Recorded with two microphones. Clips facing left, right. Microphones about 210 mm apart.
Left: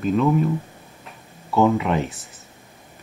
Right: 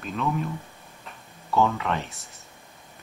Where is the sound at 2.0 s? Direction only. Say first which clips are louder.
Left 10 dB; centre (ahead or behind).